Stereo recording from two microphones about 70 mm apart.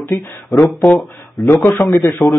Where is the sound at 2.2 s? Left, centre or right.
Centre.